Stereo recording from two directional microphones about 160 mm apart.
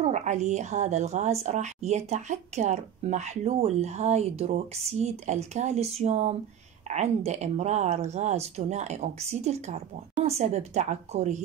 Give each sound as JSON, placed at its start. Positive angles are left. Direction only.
{"t": 0.0, "sound": "a woman's voice", "side_deg": -50}